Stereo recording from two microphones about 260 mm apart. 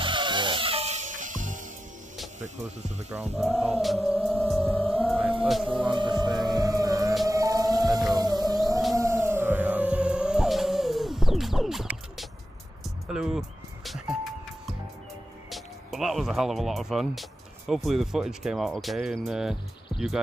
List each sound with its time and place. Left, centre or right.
0.0 s music: centre
2.4 s speech: right
3.3 s music: centre
5.8 s music: centre
15.5 s speech: centre